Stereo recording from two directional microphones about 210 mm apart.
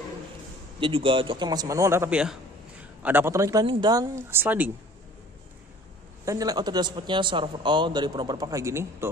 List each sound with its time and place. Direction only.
0.7 s speech: 25° right (ahead or behind); by 4.7 s 10° right (ahead or behind)
6.2 s speech: 15° right (ahead or behind)